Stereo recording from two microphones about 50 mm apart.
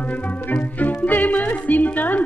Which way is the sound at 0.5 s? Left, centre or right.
Left.